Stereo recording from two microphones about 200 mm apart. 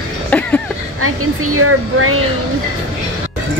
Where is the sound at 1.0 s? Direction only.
90° right.